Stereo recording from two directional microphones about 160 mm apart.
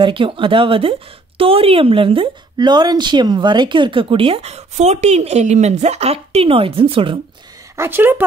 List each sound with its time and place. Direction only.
0.0 s speech: 35° right (ahead or behind)
7.7 s a woman's voice: 15° right (ahead or behind)